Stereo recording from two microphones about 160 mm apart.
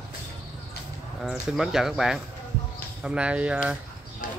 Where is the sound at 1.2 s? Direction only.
Centre (ahead or behind).